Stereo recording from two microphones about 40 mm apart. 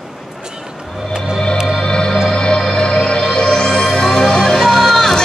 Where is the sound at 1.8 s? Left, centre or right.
Centre.